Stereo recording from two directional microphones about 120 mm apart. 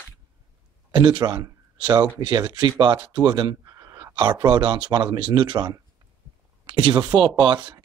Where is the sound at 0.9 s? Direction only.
40° right (ahead or behind).